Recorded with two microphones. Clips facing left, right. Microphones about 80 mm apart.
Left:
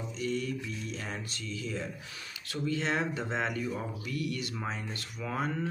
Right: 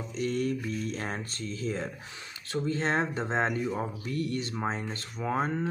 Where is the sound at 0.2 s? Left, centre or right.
Right.